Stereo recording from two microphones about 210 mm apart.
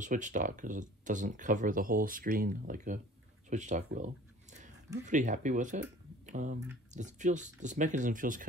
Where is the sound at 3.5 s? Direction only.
35° right (ahead or behind).